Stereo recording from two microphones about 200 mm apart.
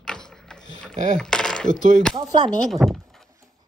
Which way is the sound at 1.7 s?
65° left (ahead or behind).